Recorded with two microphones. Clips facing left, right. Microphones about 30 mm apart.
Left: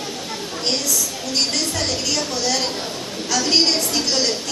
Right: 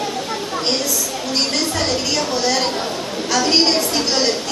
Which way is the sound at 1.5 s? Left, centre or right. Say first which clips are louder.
Right 3 dB; centre.